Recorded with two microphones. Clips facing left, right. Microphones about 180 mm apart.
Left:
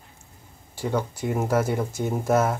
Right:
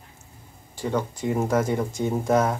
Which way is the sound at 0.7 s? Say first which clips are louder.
Even; 10° left (ahead or behind).